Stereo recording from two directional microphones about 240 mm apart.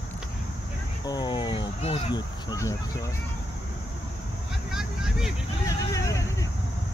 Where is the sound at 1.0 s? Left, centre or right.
Centre.